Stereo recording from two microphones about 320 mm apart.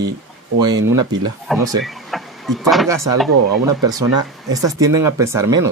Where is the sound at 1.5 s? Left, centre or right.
Centre.